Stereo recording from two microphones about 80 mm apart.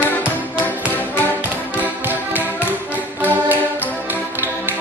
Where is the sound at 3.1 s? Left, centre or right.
Right.